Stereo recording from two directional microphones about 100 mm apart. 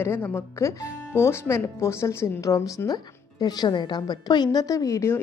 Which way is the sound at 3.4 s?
45° left (ahead or behind).